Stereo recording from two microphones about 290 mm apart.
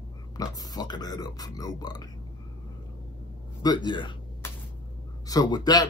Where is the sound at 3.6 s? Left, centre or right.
Centre.